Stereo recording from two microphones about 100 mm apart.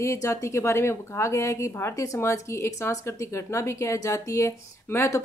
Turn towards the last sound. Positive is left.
turn(degrees=25)  # may be behind; listen again after turning